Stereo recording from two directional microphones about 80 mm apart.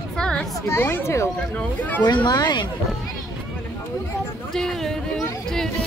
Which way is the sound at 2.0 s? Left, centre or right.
Left.